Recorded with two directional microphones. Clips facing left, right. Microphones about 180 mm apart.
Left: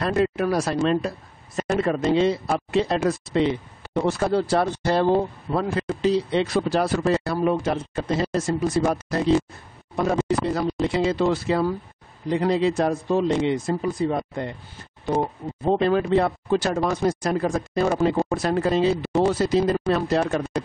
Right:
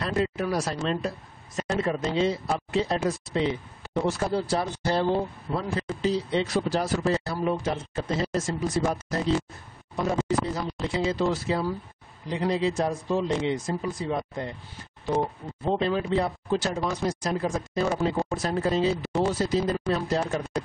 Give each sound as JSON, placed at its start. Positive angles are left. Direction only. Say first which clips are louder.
{"t": 0.0, "sound": "speech", "louder": "left 5 dB", "side_deg": 55}
{"t": 15.8, "sound": "speech", "louder": "left 6 dB", "side_deg": 60}